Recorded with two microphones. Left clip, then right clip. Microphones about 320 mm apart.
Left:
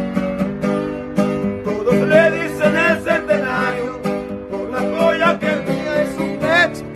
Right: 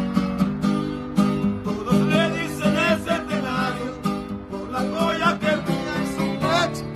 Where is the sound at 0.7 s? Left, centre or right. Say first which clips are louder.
Left 5 dB; centre.